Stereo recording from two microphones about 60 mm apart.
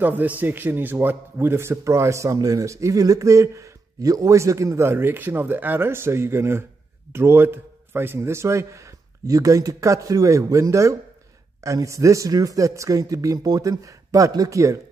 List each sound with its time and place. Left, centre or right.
0.0 s a man's voice: right